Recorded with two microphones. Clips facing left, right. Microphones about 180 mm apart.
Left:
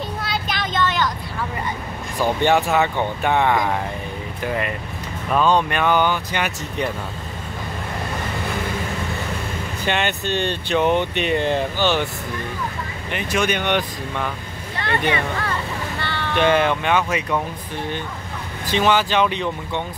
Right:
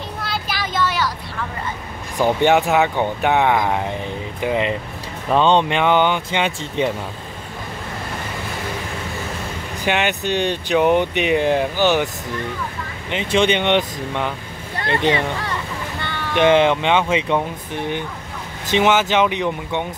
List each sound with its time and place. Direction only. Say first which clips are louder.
0.2 s a sound: right 3 dB; centre (ahead or behind)
2.1 s speech: right 3 dB; 15° right (ahead or behind)
9.8 s speech: right 3 dB; 15° right (ahead or behind)
13.1 s speech: right 4 dB; 25° right (ahead or behind)
18.7 s speech: right 2 dB; 20° right (ahead or behind)